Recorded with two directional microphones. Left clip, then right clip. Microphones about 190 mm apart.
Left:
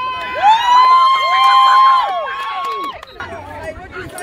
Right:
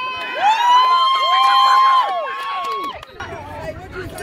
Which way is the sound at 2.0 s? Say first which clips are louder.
Left 2 dB; 40° right (ahead or behind).